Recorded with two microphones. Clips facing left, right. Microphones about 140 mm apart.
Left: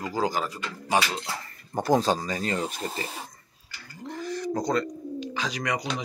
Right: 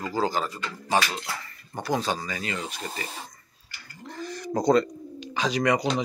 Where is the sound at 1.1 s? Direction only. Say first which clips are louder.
Left 1 dB; 25° left (ahead or behind).